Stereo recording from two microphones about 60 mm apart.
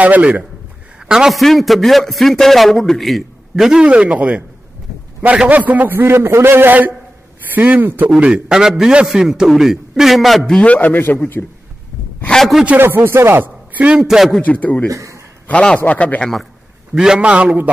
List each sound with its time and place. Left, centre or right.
0.0 s a man's voice: right
0.9 s a sound: centre
1.3 s a man's voice: centre
3.8 s a man's voice: centre
8.3 s a man's voice: centre
10.4 s a man's voice: centre; by 11.4 s left
12.3 s a man's voice: centre
12.8 s speech: right
14.0 s a man's voice: centre
14.4 s a man's voice: left
14.9 s a man's voice: right
15.4 s a man's voice: left
16.9 s a man's voice: centre